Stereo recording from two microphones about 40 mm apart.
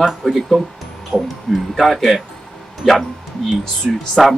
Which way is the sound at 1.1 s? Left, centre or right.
Centre.